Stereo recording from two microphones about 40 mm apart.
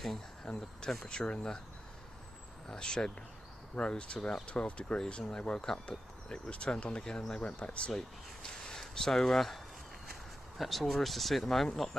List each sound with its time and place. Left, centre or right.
0.5 s speech: centre
1.0 s speech: left
2.7 s speech: centre
4.5 s speech: left
7.4 s speech: left
8.4 s speech: centre
10.6 s speech: centre